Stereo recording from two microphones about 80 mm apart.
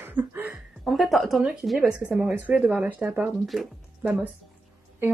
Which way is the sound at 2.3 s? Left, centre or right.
Right.